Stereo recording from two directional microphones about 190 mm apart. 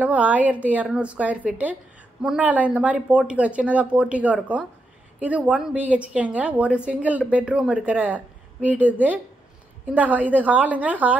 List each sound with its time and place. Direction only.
0.0 s a woman's voice: 10° right (ahead or behind)